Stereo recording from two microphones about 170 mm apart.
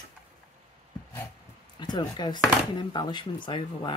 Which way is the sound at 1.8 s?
25° left (ahead or behind).